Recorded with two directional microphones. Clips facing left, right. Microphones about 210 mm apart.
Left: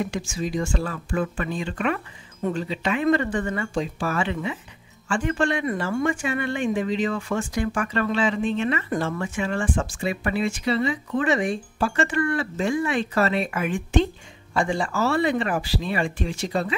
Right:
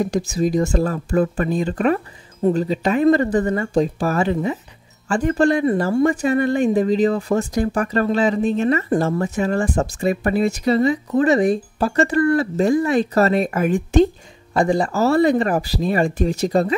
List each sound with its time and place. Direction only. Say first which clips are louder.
0.0 s speech: right 8 dB; 40° right (ahead or behind)